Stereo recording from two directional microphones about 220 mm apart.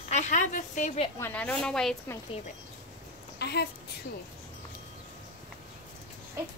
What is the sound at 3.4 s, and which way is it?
Speech, 50° left (ahead or behind).